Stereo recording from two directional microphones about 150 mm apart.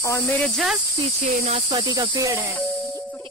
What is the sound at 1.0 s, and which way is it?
Speech, 45° right (ahead or behind).